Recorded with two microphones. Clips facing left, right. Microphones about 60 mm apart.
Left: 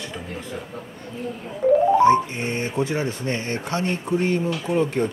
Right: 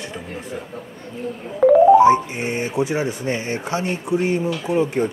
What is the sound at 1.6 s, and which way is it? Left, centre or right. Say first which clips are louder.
Music: right 5 dB; right.